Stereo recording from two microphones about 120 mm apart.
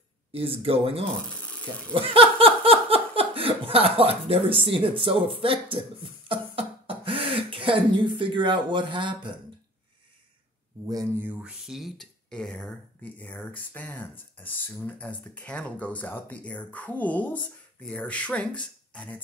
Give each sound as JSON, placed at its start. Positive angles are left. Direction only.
{"t": 0.3, "sound": "speech", "side_deg": -50}
{"t": 2.0, "sound": "laughter", "side_deg": -50}
{"t": 7.5, "sound": "speech", "side_deg": -45}
{"t": 11.1, "sound": "speech", "side_deg": -15}
{"t": 11.6, "sound": "speech", "side_deg": 0}